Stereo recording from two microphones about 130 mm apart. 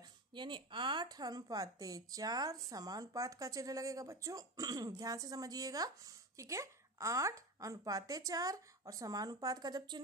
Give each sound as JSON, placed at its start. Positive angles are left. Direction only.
{"t": 0.3, "sound": "speech", "side_deg": -35}